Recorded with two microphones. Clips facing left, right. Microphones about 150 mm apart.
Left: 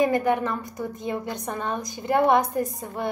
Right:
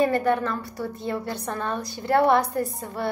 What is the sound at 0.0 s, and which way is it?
A woman's voice, 15° left (ahead or behind).